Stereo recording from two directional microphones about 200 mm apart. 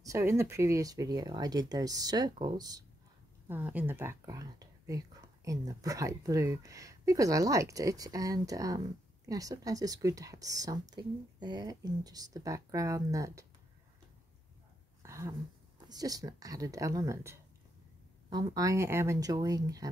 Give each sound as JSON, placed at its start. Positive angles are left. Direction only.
{"t": 0.0, "sound": "speech", "side_deg": -15}
{"t": 3.4, "sound": "speech", "side_deg": -10}
{"t": 15.0, "sound": "a sound", "side_deg": -15}
{"t": 15.9, "sound": "speech", "side_deg": -20}